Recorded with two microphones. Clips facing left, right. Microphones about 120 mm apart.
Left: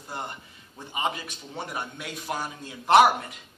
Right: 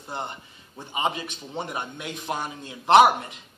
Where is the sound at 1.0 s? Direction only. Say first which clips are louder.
Right 2 dB; 25° right (ahead or behind).